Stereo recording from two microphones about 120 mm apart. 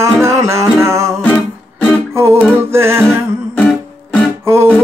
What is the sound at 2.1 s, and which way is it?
Music, 20° right (ahead or behind).